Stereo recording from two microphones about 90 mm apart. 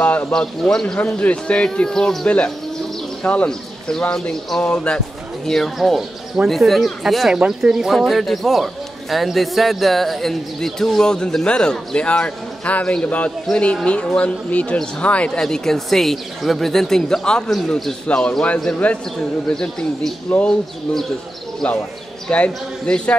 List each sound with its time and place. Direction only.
0.0 s a sound: 20° left (ahead or behind)
0.3 s speech: 5° left (ahead or behind)
21.6 s speech: 10° left (ahead or behind)